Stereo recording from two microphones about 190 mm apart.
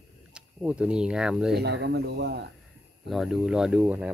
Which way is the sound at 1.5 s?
65° right (ahead or behind).